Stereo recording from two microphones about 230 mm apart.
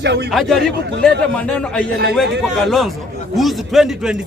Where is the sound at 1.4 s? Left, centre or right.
Centre.